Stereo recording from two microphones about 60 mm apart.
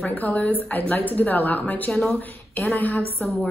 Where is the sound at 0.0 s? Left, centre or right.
Left.